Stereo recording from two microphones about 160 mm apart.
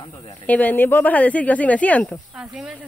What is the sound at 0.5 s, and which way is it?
Speech, 10° left (ahead or behind).